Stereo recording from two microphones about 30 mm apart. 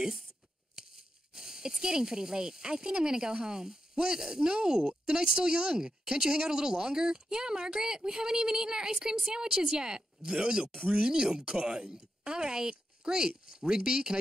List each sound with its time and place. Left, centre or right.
1.3 s speech: centre